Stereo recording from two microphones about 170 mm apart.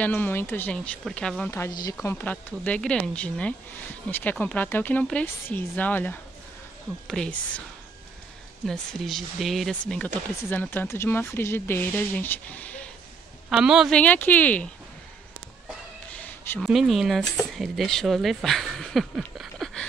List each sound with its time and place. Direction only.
0.0 s speech: 10° left (ahead or behind)
1.5 s speech: 20° left (ahead or behind)
2.0 s speech: 10° left (ahead or behind)
8.6 s speech: centre (ahead or behind)
13.5 s speech: 5° right (ahead or behind)
16.1 s speech: 10° left (ahead or behind)